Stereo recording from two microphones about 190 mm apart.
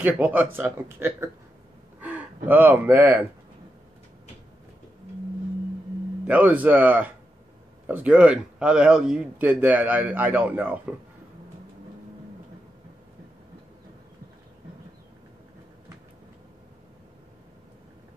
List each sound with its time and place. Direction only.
0.0 s a man's voice: 10° right (ahead or behind)
6.2 s a man's voice: 5° right (ahead or behind)